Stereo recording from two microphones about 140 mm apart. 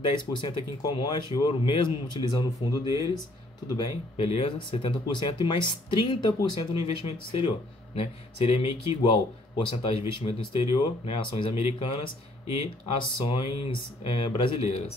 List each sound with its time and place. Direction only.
0.0 s speech: 35° left (ahead or behind)
9.8 s speech: 40° left (ahead or behind)